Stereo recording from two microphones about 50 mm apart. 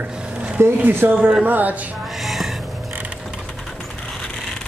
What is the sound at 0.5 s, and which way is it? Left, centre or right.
Speech, right.